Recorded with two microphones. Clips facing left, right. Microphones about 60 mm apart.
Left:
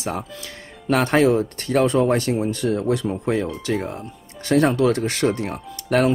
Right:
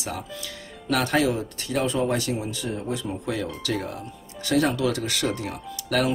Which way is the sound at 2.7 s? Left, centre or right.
Left.